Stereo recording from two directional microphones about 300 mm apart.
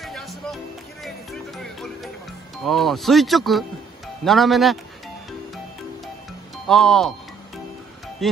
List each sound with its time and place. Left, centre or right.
0.0 s music: centre
2.6 s speech: centre
6.5 s speech: centre
8.2 s speech: centre